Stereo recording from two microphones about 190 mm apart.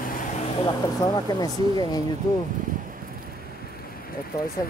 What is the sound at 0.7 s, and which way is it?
Speech, 20° left (ahead or behind).